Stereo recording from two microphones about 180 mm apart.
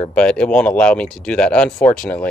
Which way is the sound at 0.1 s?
5° left (ahead or behind).